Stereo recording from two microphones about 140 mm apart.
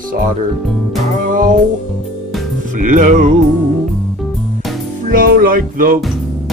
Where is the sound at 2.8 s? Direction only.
65° right (ahead or behind).